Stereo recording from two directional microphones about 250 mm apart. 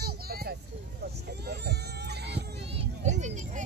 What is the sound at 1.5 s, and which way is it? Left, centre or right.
Baby cry, right.